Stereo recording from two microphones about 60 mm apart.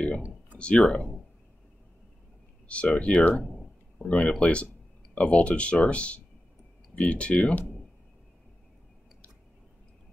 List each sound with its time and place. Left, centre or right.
0.6 s speech: centre
2.7 s speech: left